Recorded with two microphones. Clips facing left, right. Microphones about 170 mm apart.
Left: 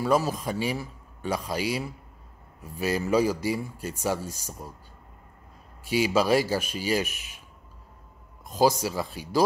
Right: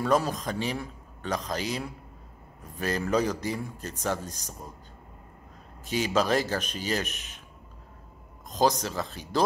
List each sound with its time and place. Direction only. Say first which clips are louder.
0.0 s speech: left 1 dB; 5° left (ahead or behind)
5.9 s speech: left 3 dB; 10° left (ahead or behind)
8.5 s speech: left 2 dB; 10° left (ahead or behind)